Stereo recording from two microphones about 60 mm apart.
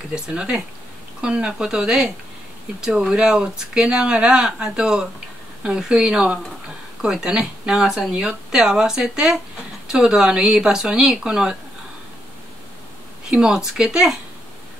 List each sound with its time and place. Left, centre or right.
0.1 s speech: centre
13.3 s speech: centre